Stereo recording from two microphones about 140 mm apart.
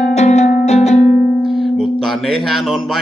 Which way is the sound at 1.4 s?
Centre (ahead or behind).